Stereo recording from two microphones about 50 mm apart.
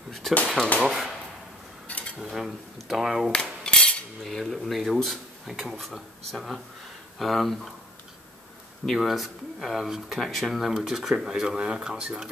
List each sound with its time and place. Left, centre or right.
0.2 s speech: centre
1.9 s a sound: left
2.2 s speech: centre
3.3 s cutlery: centre
4.7 s speech: centre
8.9 s speech: centre